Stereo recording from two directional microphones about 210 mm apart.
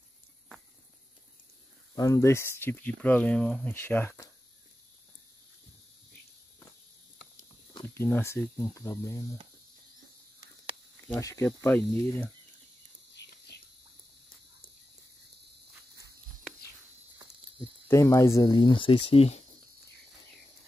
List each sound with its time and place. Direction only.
2.0 s speech: 15° left (ahead or behind)
7.8 s speech: 10° left (ahead or behind)
11.1 s speech: 15° left (ahead or behind)
17.8 s speech: 10° left (ahead or behind); by 19.4 s 30° left (ahead or behind)